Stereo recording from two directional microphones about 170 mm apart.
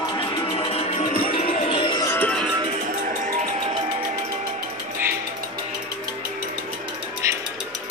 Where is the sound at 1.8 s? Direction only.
30° left (ahead or behind).